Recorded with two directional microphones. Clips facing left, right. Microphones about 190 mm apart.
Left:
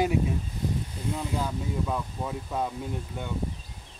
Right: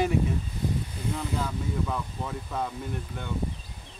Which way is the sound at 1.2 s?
15° left (ahead or behind).